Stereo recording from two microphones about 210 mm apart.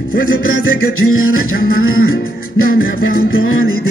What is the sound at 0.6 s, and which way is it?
Music, 80° left.